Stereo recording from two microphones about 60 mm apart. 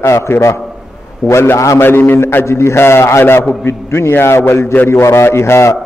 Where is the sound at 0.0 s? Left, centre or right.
Left.